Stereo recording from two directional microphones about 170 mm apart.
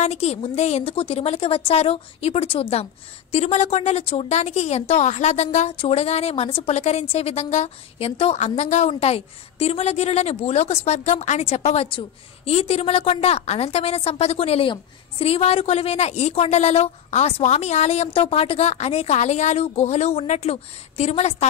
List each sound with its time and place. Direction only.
0.0 s a woman's voice: 40° left (ahead or behind)